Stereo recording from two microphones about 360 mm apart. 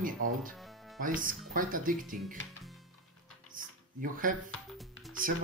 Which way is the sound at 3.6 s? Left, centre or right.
Right.